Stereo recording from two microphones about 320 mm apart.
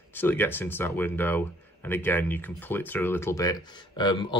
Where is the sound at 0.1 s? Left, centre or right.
Centre.